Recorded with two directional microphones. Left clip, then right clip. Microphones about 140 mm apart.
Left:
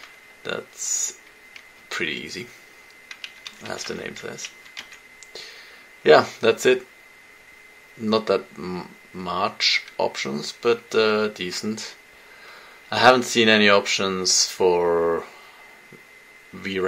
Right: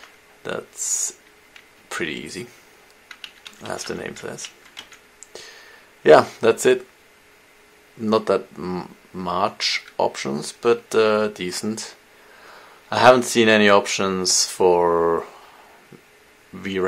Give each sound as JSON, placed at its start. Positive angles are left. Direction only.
{"t": 0.4, "sound": "speech", "side_deg": -25}
{"t": 3.1, "sound": "speech", "side_deg": -35}
{"t": 5.3, "sound": "a sound", "side_deg": -30}
{"t": 6.0, "sound": "speech", "side_deg": -25}
{"t": 8.0, "sound": "speech", "side_deg": -25}
{"t": 12.9, "sound": "speech", "side_deg": -25}